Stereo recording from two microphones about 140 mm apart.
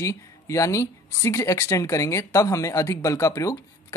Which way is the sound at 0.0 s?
20° left (ahead or behind).